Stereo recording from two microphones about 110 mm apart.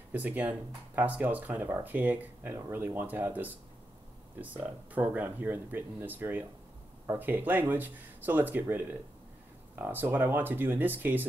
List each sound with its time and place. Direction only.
0.1 s speech: 15° right (ahead or behind)